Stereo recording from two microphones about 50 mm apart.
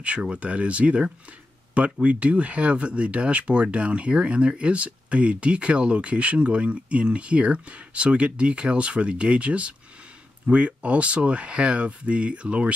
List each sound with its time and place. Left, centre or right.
0.0 s speech: right